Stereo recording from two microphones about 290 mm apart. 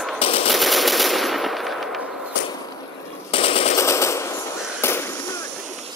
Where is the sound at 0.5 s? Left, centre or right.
Centre.